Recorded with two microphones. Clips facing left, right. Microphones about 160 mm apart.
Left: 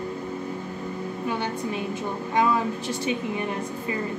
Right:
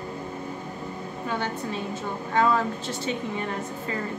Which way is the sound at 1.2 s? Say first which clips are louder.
Left 1 dB; 15° left (ahead or behind).